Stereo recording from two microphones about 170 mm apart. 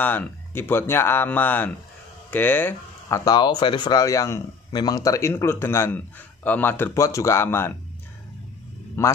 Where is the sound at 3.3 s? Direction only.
25° left (ahead or behind).